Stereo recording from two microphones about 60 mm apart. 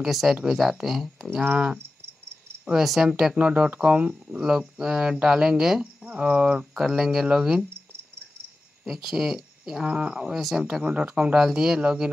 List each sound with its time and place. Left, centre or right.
0.0 s speech: centre
2.7 s speech: centre
3.3 s speech: right
4.4 s speech: centre
6.0 s speech: right
8.8 s speech: centre
9.8 s speech: right
10.3 s speech: centre; by 11.3 s right
11.3 s speech: centre